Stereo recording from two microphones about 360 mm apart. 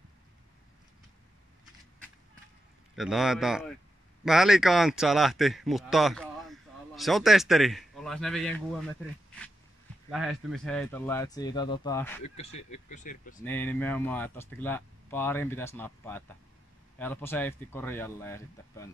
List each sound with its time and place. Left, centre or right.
3.0 s speech: centre
10.1 s speech: centre
12.9 s speech: left
13.4 s speech: centre